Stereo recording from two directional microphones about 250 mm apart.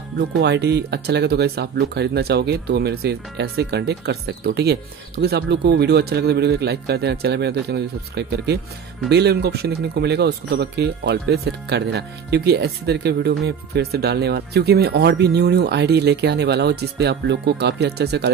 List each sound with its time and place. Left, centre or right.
0.2 s speech: right